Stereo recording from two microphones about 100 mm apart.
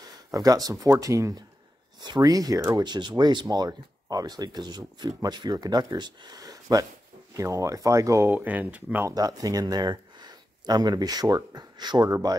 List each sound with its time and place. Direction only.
0.3 s speech: 35° right (ahead or behind)
2.0 s speech: 45° right (ahead or behind)
2.8 s speech: 50° right (ahead or behind); by 8.3 s 35° right (ahead or behind)
8.3 s speech: 15° right (ahead or behind)
9.1 s speech: 40° right (ahead or behind)